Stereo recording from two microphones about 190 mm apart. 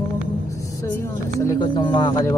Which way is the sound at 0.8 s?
15° left (ahead or behind).